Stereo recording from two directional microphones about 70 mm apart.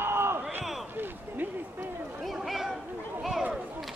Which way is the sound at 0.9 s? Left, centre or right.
Right.